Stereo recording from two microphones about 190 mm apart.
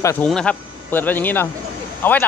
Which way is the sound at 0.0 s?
15° left (ahead or behind).